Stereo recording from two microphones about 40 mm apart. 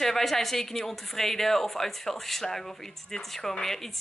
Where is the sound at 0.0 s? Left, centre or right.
Centre.